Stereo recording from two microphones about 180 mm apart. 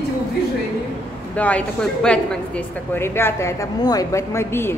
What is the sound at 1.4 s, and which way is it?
A woman's voice, 10° left (ahead or behind).